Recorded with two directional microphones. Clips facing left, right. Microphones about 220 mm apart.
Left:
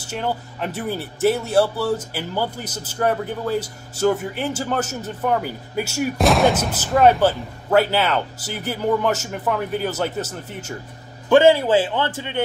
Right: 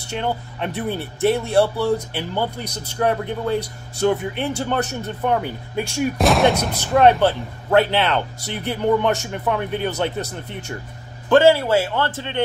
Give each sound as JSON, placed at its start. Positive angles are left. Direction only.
{"t": 0.0, "sound": "speech", "side_deg": 5}
{"t": 11.2, "sound": "a man's voice", "side_deg": 15}